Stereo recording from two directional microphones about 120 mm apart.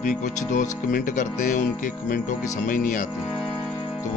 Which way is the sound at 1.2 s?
90° left.